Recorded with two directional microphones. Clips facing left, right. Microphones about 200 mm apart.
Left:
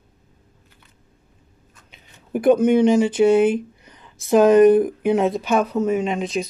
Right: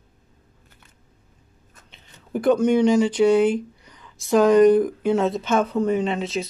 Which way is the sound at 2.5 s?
55° left (ahead or behind).